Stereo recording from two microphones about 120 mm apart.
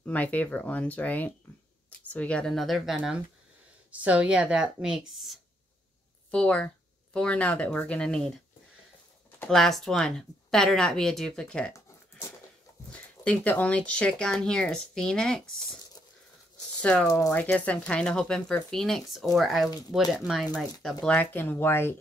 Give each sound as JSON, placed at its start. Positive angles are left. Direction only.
{"t": 0.0, "sound": "a woman's voice", "side_deg": 10}
{"t": 6.3, "sound": "speech", "side_deg": 10}
{"t": 9.5, "sound": "a woman's voice", "side_deg": 0}
{"t": 12.9, "sound": "speech", "side_deg": 10}
{"t": 16.8, "sound": "a woman's voice", "side_deg": 10}